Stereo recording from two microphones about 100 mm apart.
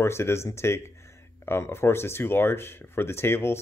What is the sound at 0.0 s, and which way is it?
Speech, 25° left (ahead or behind).